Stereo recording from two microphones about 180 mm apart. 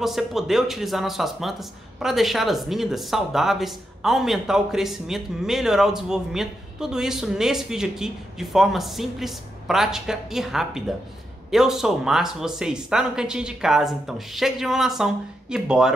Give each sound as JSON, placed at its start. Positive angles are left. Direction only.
{"t": 0.0, "sound": "speech", "side_deg": 0}